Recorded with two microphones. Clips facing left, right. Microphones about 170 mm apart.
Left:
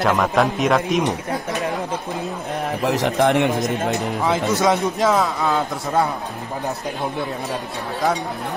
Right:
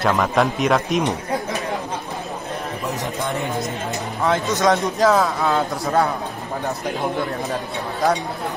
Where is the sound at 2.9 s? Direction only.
75° left (ahead or behind).